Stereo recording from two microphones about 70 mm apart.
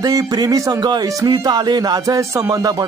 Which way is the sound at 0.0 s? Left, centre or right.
Right.